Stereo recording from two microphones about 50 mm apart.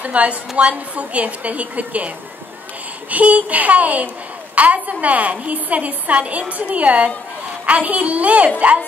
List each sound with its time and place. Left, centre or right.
0.0 s a woman's voice: right